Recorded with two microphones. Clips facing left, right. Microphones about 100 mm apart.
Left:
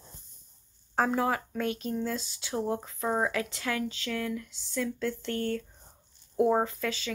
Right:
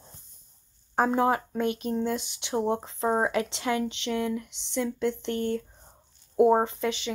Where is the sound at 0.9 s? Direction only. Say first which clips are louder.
Right 4 dB; 25° right (ahead or behind).